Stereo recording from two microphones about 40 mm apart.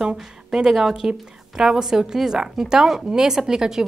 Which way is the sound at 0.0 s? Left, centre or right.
Centre.